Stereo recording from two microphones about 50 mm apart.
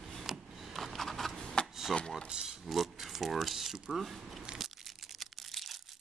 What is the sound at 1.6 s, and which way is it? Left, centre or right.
Chopping, left.